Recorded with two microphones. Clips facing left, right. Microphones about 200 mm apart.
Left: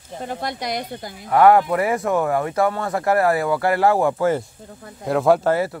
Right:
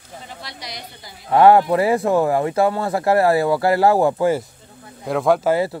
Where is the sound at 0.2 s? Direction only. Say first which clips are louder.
Left 12 dB; 50° left (ahead or behind).